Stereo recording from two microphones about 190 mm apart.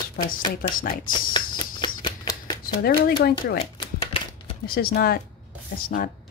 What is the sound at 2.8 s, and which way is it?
Speech, 55° left (ahead or behind).